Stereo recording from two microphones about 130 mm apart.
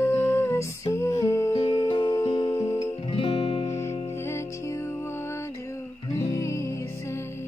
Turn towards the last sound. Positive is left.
turn(degrees=20)  # may be behind; listen again after turning